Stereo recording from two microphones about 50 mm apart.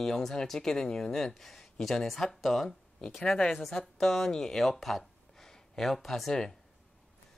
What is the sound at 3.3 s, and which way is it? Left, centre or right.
Speech, centre.